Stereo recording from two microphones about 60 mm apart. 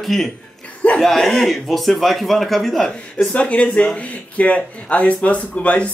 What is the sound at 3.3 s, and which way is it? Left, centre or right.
Speech, left.